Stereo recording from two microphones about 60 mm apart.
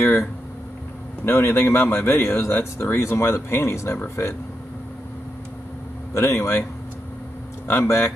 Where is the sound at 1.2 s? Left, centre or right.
Left.